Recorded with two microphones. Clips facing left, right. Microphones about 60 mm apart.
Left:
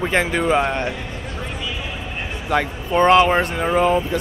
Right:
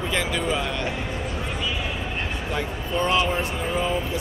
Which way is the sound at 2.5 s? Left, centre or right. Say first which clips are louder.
Left 9 dB; left.